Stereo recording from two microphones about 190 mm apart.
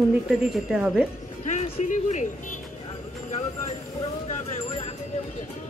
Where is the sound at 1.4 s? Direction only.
40° left (ahead or behind).